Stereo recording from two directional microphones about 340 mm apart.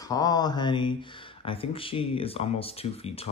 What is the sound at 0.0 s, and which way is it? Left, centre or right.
Speech, centre.